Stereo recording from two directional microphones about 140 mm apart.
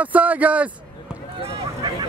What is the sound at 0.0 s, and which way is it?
Speech, 10° right (ahead or behind).